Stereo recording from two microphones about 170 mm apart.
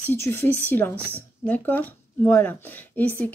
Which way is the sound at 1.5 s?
10° left (ahead or behind).